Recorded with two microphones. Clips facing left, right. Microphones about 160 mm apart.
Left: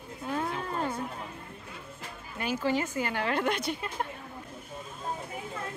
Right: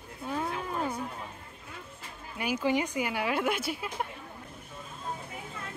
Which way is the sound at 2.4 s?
15° right (ahead or behind).